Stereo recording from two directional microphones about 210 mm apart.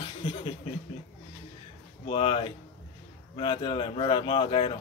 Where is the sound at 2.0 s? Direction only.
25° left (ahead or behind).